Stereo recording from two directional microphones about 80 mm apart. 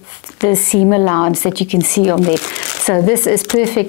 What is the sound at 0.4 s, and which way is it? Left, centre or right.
Speech, centre.